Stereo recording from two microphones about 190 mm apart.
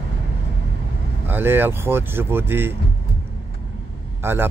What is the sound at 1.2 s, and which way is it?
Speech, 10° right (ahead or behind).